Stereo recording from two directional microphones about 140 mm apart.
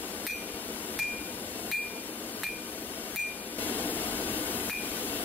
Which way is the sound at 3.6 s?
10° left (ahead or behind).